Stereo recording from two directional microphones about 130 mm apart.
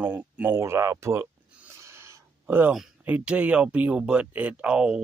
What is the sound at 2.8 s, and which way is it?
Speech, 10° right (ahead or behind).